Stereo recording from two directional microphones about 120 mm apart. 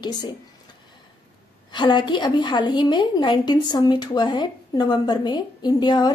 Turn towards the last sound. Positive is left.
turn(degrees=35)  # may be behind; listen again after turning